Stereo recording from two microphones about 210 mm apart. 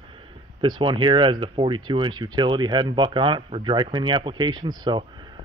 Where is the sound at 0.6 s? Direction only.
20° right (ahead or behind).